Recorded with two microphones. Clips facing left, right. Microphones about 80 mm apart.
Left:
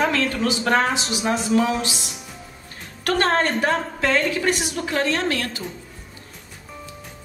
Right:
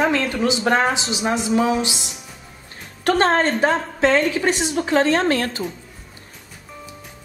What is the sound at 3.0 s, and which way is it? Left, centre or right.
A woman's voice, right.